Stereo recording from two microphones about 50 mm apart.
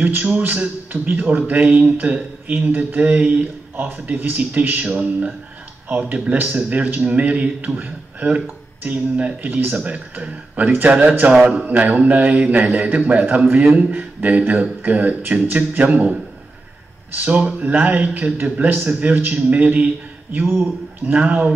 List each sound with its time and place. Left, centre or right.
0.0 s speech: right
11.2 s speech: right
11.6 s speech: right
17.1 s speech: right
21.1 s speech: right